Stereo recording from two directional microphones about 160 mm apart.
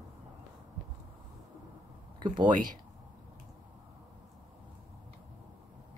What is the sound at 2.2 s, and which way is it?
Speech, 30° right (ahead or behind).